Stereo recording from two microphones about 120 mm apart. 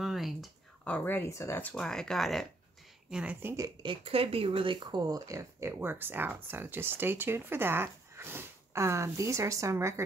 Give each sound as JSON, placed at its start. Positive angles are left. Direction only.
{"t": 0.0, "sound": "a sound", "side_deg": 0}
{"t": 0.8, "sound": "speech", "side_deg": 15}
{"t": 3.1, "sound": "a woman's voice", "side_deg": -5}
{"t": 3.4, "sound": "speech", "side_deg": -25}
{"t": 3.8, "sound": "speech", "side_deg": -50}